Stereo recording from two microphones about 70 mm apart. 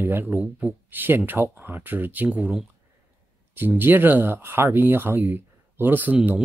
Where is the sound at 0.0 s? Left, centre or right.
Right.